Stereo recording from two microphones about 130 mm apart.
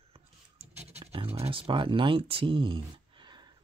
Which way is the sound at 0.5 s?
55° right (ahead or behind).